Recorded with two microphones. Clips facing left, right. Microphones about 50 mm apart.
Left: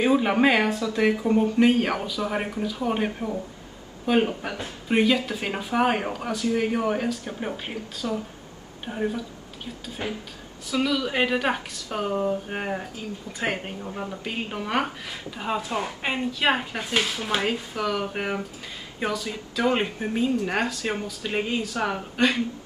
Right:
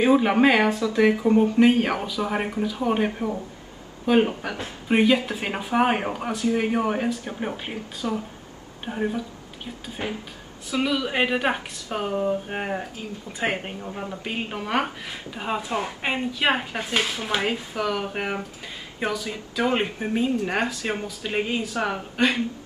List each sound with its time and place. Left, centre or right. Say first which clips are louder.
0.0 s speech: right 2 dB; centre
10.0 s speech: right 1 dB; right
13.8 s speech: right 1 dB; centre